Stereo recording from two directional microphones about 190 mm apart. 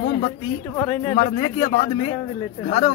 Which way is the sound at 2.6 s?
40° left (ahead or behind).